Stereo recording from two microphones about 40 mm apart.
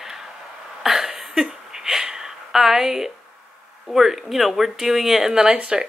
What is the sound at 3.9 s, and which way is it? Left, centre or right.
Speech, centre.